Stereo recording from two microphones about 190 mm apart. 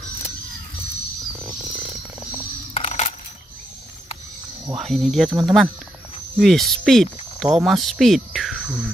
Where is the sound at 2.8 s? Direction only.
30° left (ahead or behind).